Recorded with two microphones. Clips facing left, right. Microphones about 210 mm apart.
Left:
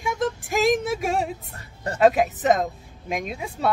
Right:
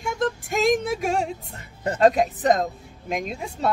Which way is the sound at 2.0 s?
5° left (ahead or behind).